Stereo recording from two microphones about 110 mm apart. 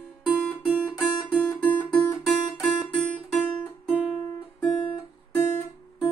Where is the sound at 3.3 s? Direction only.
Centre (ahead or behind).